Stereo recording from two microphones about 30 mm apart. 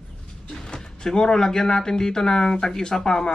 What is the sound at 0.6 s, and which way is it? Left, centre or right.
Speech, left.